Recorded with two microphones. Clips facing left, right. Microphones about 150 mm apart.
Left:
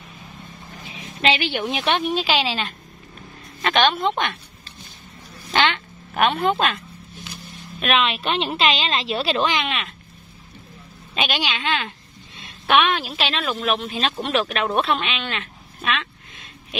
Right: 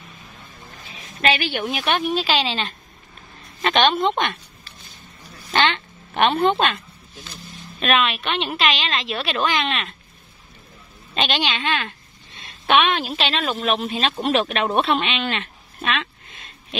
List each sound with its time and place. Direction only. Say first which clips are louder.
0.8 s a woman's voice: even; 20° left (ahead or behind); by 4.1 s centre (ahead or behind)
4.1 s speech: right 1 dB; 15° right (ahead or behind)
5.7 s speech: right 1 dB; centre (ahead or behind)
8.0 s a woman's voice: left 1 dB; 30° left (ahead or behind)
9.4 s a woman's voice: even; 15° left (ahead or behind)
11.1 s a woman's voice: right 2 dB; 5° left (ahead or behind)
12.6 s a woman's voice: right 1 dB; centre (ahead or behind)
14.2 s speech: right 3 dB; 35° right (ahead or behind)
14.6 s speech: right 1 dB; 5° right (ahead or behind)